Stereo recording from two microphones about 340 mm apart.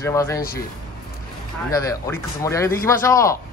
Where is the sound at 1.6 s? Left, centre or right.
Centre.